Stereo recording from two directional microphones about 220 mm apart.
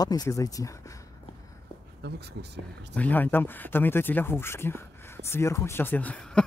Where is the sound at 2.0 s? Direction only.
45° right (ahead or behind).